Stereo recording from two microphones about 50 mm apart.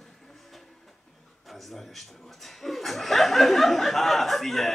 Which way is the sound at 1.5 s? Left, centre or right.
Centre.